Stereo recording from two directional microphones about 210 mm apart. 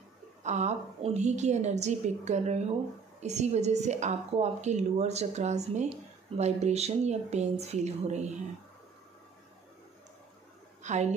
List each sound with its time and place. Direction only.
0.4 s a woman's voice: 35° right (ahead or behind)
10.8 s a woman's voice: 35° right (ahead or behind)